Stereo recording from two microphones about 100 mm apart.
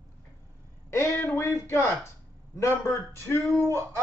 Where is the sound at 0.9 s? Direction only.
30° left (ahead or behind).